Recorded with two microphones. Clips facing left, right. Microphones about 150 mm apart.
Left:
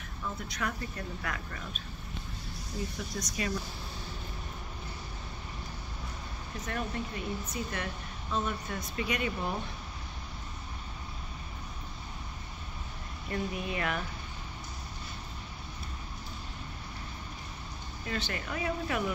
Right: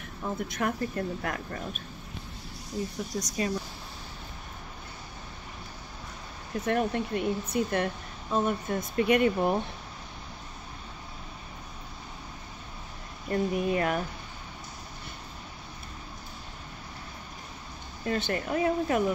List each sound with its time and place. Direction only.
0.2 s speech: 50° right (ahead or behind)
3.2 s speech: 35° right (ahead or behind)
6.6 s speech: 60° right (ahead or behind)
13.3 s speech: 50° right (ahead or behind)
18.0 s speech: 45° right (ahead or behind)